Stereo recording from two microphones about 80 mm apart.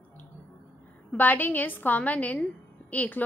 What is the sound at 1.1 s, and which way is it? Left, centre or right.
A woman's voice, left.